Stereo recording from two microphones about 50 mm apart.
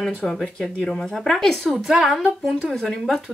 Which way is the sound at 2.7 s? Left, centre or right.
Centre.